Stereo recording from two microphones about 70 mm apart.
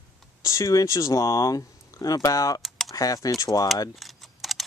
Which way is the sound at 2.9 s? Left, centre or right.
Left.